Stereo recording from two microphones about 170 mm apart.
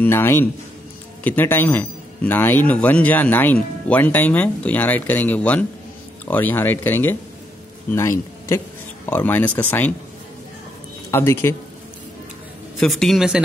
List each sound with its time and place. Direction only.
0.0 s a man's voice: 15° left (ahead or behind)
11.1 s speech: 15° left (ahead or behind)
12.7 s a man's voice: centre (ahead or behind)